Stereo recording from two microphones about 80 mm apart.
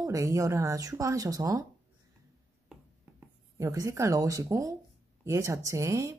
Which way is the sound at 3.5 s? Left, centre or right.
Right.